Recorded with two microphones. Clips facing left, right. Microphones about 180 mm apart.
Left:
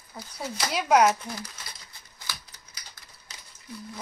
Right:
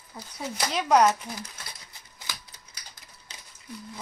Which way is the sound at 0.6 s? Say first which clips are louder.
Even; 5° left (ahead or behind).